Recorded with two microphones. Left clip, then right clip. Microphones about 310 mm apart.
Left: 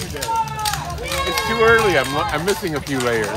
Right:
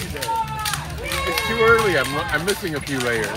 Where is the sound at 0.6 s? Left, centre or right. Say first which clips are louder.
Left 3 dB; left.